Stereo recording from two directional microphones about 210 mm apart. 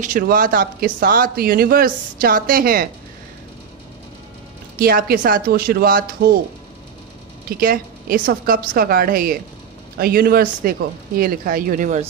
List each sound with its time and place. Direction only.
0.0 s speech: 40° right (ahead or behind)
4.7 s speech: 45° right (ahead or behind)
7.4 s speech: 45° right (ahead or behind)